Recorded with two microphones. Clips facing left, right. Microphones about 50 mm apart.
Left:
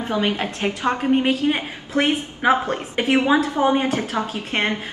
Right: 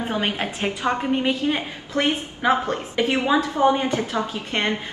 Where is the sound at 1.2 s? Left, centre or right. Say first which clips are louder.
Left 2 dB; left.